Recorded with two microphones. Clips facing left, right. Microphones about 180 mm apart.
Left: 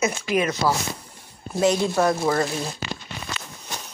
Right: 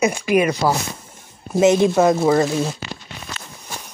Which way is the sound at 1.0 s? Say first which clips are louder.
Right 1 dB; 20° right (ahead or behind).